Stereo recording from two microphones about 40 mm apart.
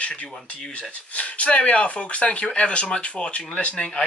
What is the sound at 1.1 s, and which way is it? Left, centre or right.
Speech, left.